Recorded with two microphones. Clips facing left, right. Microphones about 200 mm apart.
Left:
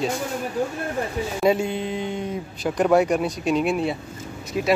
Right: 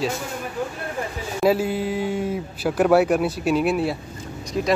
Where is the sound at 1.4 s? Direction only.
5° right (ahead or behind).